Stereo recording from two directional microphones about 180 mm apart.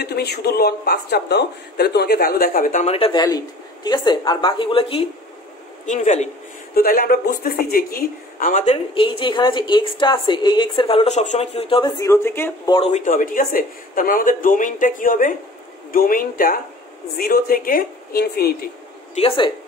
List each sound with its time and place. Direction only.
0.0 s speech: 60° left (ahead or behind); by 5.0 s 30° left (ahead or behind)
5.9 s speech: 40° left (ahead or behind)
6.7 s a woman's voice: 55° left (ahead or behind)
8.6 s a woman's voice: 30° left (ahead or behind)
12.0 s speech: 15° left (ahead or behind)
12.7 s speech: 30° left (ahead or behind)
13.0 s a woman's voice: 50° left (ahead or behind)
19.1 s a woman's voice: 30° left (ahead or behind)